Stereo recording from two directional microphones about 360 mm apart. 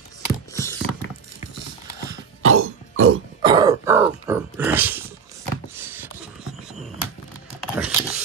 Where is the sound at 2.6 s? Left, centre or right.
Right.